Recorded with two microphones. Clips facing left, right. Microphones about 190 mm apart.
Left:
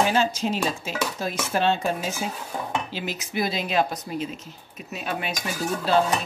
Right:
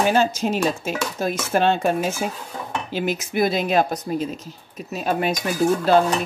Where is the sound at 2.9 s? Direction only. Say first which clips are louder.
Right 7 dB; 50° right (ahead or behind).